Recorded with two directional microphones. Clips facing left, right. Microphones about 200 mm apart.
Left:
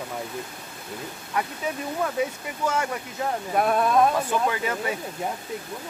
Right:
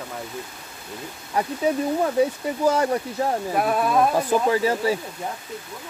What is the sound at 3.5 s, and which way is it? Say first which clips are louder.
Speech: left 2 dB; centre (ahead or behind).